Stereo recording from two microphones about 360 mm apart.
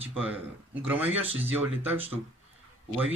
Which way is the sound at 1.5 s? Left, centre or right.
Centre.